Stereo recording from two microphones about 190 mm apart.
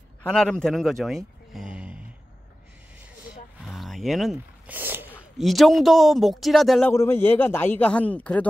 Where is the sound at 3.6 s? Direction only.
Centre (ahead or behind).